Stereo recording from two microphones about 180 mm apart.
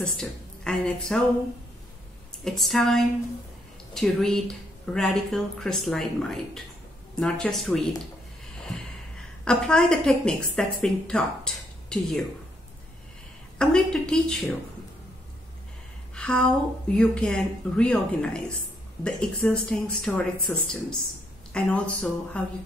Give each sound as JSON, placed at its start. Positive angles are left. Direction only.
{"t": 0.0, "sound": "speech", "side_deg": 5}
{"t": 2.4, "sound": "a woman's voice", "side_deg": 0}
{"t": 9.1, "sound": "a woman's voice", "side_deg": 5}
{"t": 13.6, "sound": "a woman's voice", "side_deg": 5}
{"t": 16.2, "sound": "a woman's voice", "side_deg": 5}